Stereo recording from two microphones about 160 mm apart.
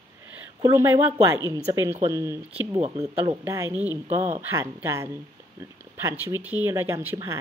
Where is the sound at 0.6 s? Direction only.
20° right (ahead or behind).